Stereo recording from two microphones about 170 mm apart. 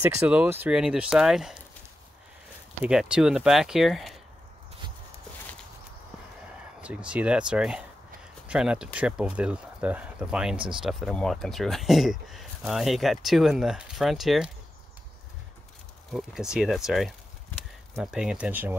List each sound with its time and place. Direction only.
0.0 s speech: 10° right (ahead or behind)
2.8 s speech: 5° right (ahead or behind)
6.8 s speech: 5° right (ahead or behind)
16.1 s speech: 5° right (ahead or behind)